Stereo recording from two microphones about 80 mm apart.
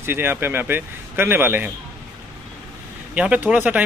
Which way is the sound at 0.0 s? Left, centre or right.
Right.